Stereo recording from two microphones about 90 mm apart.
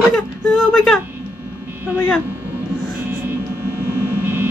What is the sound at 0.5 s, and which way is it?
Speech, 5° left (ahead or behind).